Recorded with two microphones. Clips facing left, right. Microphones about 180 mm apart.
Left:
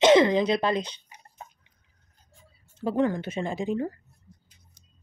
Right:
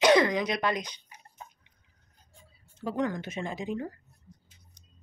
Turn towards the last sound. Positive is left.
turn(degrees=30)  # may be behind; listen again after turning